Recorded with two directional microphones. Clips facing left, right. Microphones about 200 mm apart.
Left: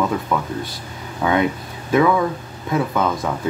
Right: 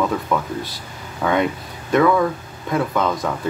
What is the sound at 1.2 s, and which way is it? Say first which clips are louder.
Speech: left 1 dB; 5° left (ahead or behind).